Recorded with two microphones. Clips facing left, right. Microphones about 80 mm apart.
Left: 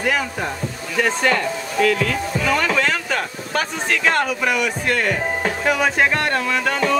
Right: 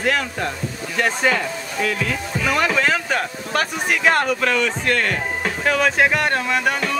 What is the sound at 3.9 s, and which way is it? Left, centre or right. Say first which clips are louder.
Speech: right 1 dB; centre.